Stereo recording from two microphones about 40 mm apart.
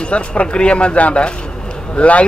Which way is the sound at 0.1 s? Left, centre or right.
Left.